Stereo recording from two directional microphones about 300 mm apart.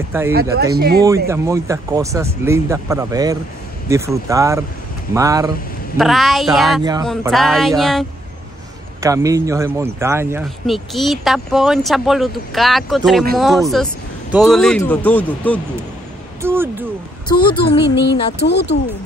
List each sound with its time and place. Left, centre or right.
0.3 s speech: right
1.0 s speech: centre
5.9 s speech: centre
6.8 s speech: centre
7.1 s speech: centre
9.0 s speech: centre
16.3 s speech: centre
17.3 s speech: centre
17.6 s music: left